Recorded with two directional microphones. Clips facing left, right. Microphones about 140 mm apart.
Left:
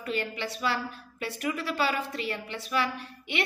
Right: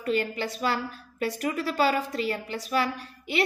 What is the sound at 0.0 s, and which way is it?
A woman's voice, 40° right (ahead or behind).